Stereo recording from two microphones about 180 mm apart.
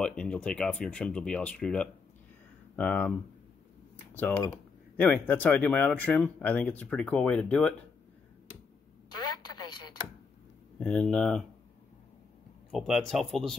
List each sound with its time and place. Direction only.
0.0 s speech: 5° left (ahead or behind)
3.9 s computer keyboard: 10° left (ahead or behind)
4.9 s speech: 10° left (ahead or behind)
9.7 s a sound: 25° left (ahead or behind)
10.8 s speech: 5° left (ahead or behind)
12.7 s speech: centre (ahead or behind)